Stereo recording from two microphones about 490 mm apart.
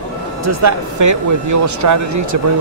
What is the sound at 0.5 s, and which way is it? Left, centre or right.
Speech, right.